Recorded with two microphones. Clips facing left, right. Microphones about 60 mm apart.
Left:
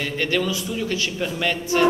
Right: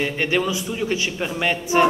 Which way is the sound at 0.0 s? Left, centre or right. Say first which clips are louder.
Right 2 dB; centre.